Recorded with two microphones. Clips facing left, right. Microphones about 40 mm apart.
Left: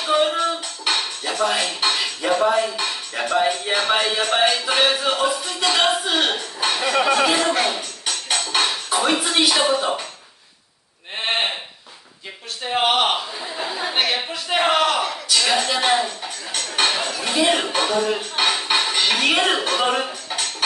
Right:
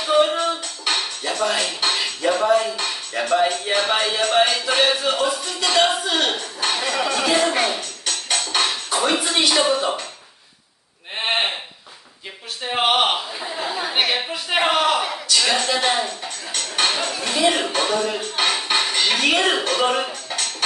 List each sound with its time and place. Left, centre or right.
0.0 s music: centre
7.0 s speech: left
7.3 s speech: centre
8.0 s music: centre
9.2 s speech: centre
11.1 s sheep: centre
12.6 s a sound: centre
15.2 s speech: centre